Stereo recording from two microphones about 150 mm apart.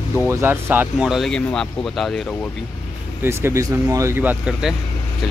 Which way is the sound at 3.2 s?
15° right (ahead or behind).